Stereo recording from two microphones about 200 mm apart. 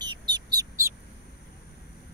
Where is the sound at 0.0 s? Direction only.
20° right (ahead or behind).